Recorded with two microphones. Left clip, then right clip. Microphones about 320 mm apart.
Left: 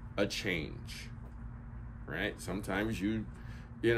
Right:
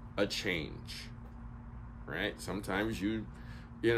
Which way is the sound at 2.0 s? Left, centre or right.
Centre.